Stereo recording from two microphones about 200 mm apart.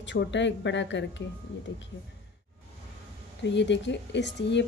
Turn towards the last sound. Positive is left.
turn(degrees=60)  # may be behind; listen again after turning